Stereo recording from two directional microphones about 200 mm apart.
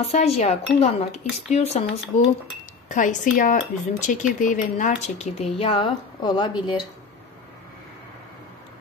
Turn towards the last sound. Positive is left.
turn(degrees=20)  # may be behind; listen again after turning